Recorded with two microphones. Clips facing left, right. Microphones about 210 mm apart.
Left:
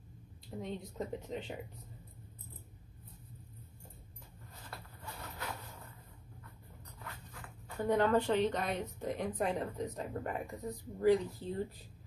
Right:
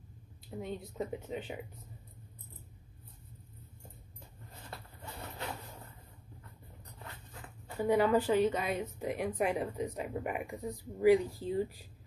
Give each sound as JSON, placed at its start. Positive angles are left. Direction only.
{"t": 0.6, "sound": "speech", "side_deg": -5}
{"t": 7.0, "sound": "dog", "side_deg": -25}
{"t": 7.8, "sound": "a woman's voice", "side_deg": -10}